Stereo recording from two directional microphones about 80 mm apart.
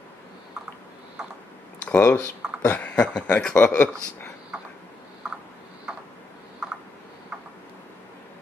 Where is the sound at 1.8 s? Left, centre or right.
Centre.